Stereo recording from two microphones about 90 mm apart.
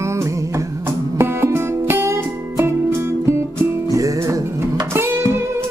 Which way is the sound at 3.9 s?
40° right (ahead or behind).